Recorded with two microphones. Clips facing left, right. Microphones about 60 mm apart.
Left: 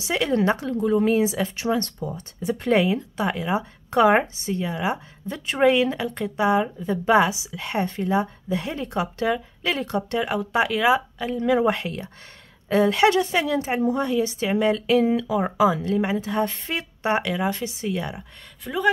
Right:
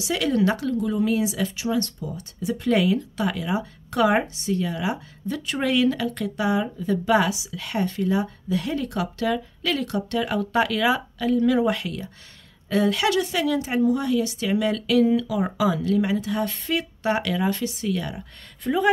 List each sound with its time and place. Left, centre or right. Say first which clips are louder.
0.0 s a woman's voice: even; left
18.6 s speech: right 5 dB; centre